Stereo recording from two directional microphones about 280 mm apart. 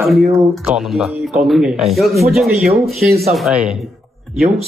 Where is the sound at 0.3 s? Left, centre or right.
Centre.